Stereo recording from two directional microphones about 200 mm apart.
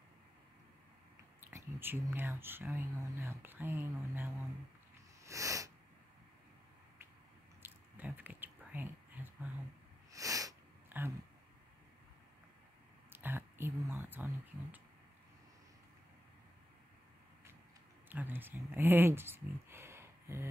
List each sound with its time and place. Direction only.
1.4 s speech: 10° right (ahead or behind)
5.2 s a sound: 15° right (ahead or behind)
7.6 s whispering: 10° right (ahead or behind)
10.1 s a sound: 15° right (ahead or behind)
13.1 s whispering: 10° right (ahead or behind)
18.1 s speech: 10° right (ahead or behind)